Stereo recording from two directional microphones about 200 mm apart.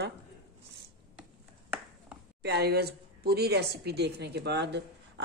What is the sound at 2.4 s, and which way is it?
A woman's voice, 55° right (ahead or behind).